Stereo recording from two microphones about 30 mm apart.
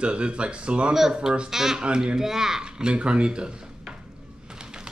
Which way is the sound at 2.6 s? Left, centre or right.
Right.